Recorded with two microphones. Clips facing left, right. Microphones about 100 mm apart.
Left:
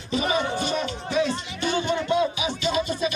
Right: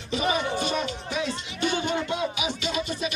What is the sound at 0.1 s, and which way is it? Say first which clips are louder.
Music: left 1 dB; 35° left (ahead or behind).